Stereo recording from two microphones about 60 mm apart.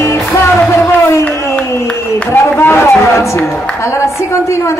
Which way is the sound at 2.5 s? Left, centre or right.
Left.